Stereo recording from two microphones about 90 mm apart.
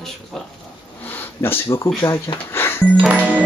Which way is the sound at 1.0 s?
25° left (ahead or behind).